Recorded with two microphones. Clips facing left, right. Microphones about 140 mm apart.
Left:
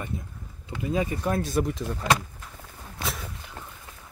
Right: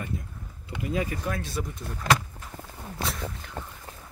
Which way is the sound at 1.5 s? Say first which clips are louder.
Left 8 dB; 70° left (ahead or behind).